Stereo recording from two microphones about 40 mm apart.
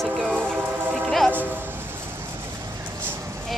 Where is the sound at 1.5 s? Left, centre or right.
Right.